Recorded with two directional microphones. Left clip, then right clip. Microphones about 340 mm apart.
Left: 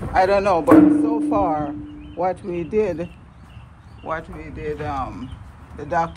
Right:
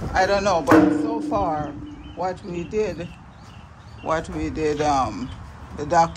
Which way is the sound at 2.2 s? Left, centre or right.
Left.